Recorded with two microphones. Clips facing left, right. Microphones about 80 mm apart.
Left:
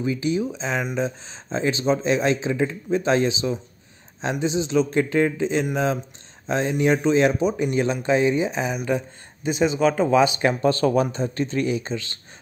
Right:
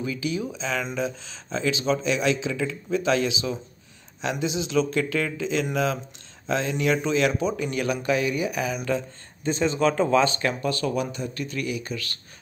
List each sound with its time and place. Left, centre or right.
0.0 s speech: left; by 10.4 s centre
10.6 s speech: left